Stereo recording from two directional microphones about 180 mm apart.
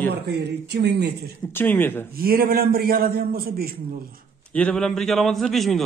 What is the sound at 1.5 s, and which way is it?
Speech, 10° left (ahead or behind).